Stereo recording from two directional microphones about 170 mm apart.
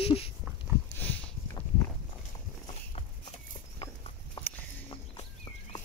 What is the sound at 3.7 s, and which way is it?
Horse, 30° left (ahead or behind).